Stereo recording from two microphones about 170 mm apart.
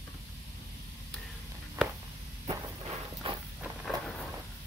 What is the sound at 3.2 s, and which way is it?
Walk, 30° right (ahead or behind).